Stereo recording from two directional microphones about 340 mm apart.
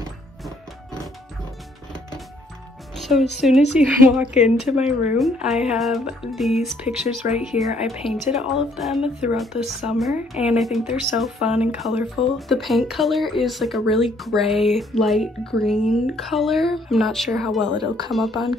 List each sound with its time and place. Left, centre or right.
3.0 s speech: centre
7.5 s speech: left
8.1 s speech: centre
17.7 s speech: centre
18.1 s speech: centre